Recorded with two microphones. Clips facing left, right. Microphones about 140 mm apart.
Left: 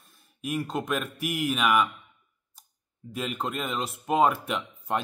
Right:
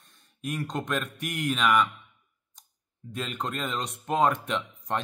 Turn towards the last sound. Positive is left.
turn(degrees=5)  # may be behind; listen again after turning